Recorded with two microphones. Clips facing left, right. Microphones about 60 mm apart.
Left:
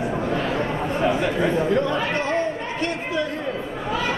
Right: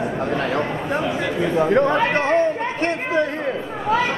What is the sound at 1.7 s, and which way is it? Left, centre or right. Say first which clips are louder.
Chatter: right 5 dB; right.